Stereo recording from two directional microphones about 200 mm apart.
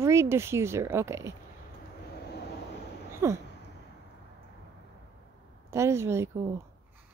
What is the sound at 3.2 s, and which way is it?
Speech, 15° right (ahead or behind).